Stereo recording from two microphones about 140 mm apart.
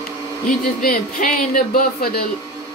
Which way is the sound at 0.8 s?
85° left.